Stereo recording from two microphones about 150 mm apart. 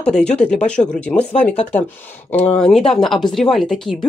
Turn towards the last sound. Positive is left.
turn(degrees=5)  # may be behind; listen again after turning